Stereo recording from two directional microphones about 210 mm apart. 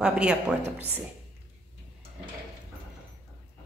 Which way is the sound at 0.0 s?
5° right (ahead or behind).